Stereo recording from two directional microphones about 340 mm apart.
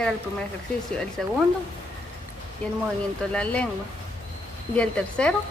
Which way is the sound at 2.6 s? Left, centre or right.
Centre.